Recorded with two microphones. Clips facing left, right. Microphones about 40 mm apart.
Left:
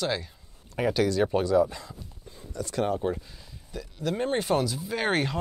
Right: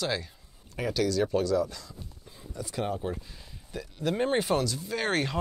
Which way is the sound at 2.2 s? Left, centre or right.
Centre.